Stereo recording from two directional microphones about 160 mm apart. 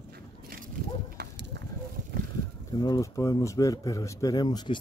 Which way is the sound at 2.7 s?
25° left (ahead or behind).